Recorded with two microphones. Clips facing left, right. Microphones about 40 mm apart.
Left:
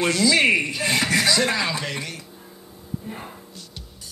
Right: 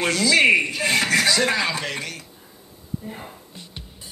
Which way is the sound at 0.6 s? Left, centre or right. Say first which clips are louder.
Right 2 dB; centre.